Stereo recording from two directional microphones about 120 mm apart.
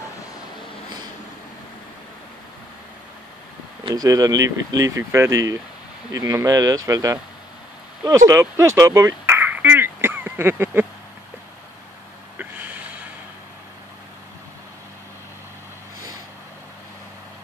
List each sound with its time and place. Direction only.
3.9 s speech: 30° right (ahead or behind)
8.3 s speech: 20° right (ahead or behind)
12.4 s a sound: 15° right (ahead or behind)